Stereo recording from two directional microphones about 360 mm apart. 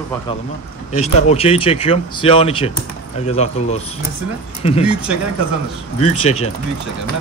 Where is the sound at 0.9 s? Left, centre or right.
Centre.